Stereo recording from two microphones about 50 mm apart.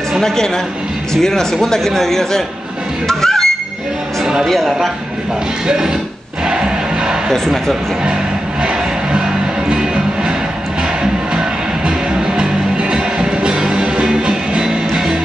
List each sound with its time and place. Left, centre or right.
1.1 s a man's voice: centre
3.1 s honk: centre
4.2 s a sound: centre
4.5 s a man's voice: centre
6.4 s a sound: centre
9.7 s music: centre